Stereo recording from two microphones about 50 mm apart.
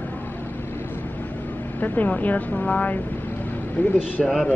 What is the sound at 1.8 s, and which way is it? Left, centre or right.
Speech, left.